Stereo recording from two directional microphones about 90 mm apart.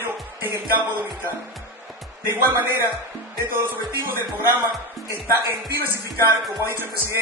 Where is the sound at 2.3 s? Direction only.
25° right (ahead or behind).